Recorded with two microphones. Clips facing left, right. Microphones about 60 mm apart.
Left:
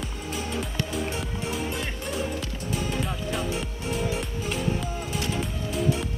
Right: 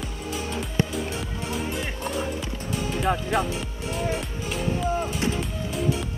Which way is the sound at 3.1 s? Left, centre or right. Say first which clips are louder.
Right 7 dB; right.